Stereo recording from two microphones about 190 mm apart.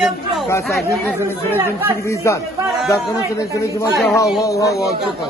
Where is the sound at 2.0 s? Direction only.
15° left (ahead or behind).